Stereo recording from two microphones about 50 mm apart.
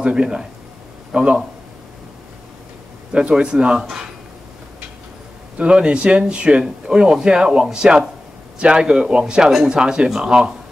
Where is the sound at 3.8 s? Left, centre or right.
Centre.